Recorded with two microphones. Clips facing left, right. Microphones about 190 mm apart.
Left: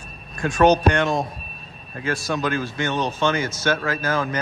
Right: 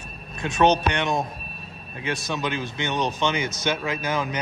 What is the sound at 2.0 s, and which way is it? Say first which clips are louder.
Speech: left 3 dB; 20° right (ahead or behind).